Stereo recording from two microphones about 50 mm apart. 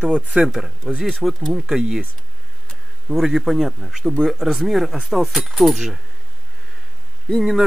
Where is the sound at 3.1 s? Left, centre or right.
Centre.